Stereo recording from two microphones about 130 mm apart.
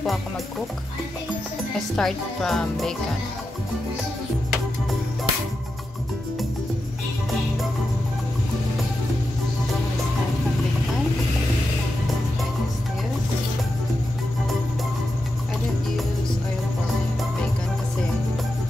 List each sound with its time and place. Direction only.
2.0 s speech: centre (ahead or behind)